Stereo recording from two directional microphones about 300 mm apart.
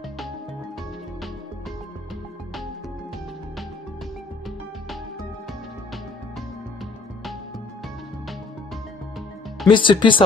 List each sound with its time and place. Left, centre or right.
9.7 s speech: centre